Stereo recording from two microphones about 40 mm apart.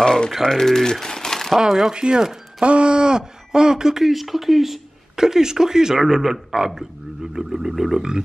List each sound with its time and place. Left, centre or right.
0.3 s speech: centre
1.6 s speech: centre